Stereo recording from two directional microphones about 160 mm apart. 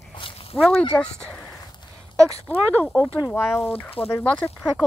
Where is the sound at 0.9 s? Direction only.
5° left (ahead or behind).